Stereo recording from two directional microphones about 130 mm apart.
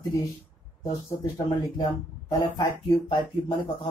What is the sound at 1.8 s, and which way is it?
Speech, 30° left (ahead or behind).